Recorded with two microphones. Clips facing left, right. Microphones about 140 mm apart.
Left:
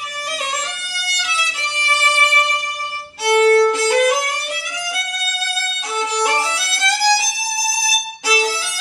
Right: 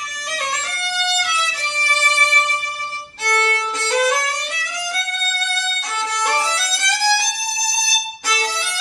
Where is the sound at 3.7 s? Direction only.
10° left (ahead or behind).